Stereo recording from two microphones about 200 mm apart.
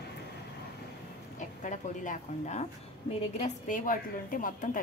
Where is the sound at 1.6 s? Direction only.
40° left (ahead or behind).